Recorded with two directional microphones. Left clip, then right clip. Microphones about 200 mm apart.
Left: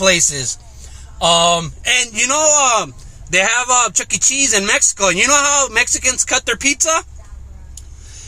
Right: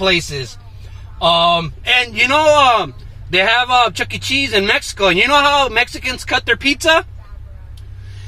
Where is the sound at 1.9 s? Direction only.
15° left (ahead or behind).